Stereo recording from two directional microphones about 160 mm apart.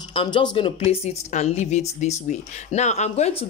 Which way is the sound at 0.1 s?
30° left (ahead or behind).